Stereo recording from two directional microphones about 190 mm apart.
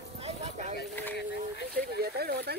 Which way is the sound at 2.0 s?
55° right (ahead or behind).